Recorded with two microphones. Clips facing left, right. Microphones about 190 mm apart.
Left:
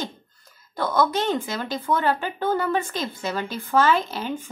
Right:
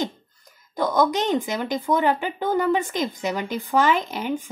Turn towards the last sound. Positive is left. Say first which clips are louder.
# right 1 dB
turn(degrees=-15)  # may be behind; listen again after turning